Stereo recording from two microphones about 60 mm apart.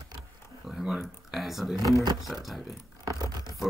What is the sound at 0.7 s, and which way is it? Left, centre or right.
Computer keyboard, centre.